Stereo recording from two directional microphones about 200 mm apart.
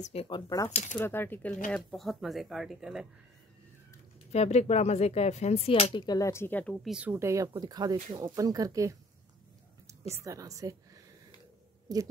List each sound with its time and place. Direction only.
0.0 s speech: 30° left (ahead or behind)
0.9 s speech: 10° left (ahead or behind)
4.3 s speech: 30° left (ahead or behind); by 8.9 s 15° right (ahead or behind)
10.1 s a woman's voice: 15° right (ahead or behind)
11.9 s speech: 20° right (ahead or behind)